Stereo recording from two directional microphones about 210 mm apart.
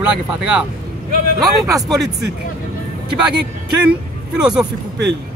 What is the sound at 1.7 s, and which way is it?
Speech, 15° right (ahead or behind).